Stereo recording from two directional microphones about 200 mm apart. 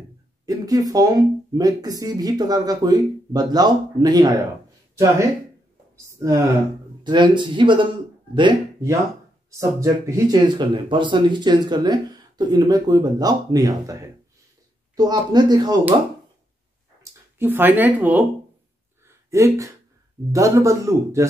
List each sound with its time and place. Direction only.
0.5 s speech: 20° right (ahead or behind)
17.0 s speech: 15° right (ahead or behind)
19.0 s a sound: 15° right (ahead or behind)
20.3 s speech: 15° right (ahead or behind)